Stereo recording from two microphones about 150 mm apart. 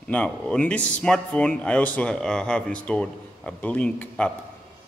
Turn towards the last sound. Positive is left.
turn(degrees=5)  # may be behind; listen again after turning